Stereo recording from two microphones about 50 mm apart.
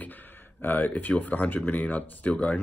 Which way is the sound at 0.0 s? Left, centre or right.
Left.